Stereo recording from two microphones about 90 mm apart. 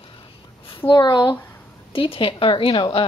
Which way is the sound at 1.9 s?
90° left.